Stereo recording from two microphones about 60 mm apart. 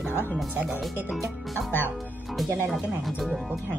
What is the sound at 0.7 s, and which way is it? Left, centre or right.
Speech, centre.